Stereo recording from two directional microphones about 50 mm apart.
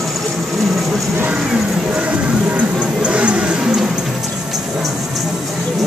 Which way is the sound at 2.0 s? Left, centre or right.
Right.